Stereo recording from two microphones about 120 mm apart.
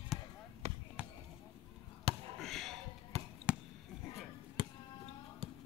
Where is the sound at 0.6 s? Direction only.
60° right (ahead or behind).